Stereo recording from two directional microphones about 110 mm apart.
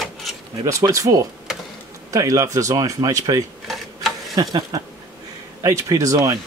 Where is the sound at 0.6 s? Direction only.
30° right (ahead or behind).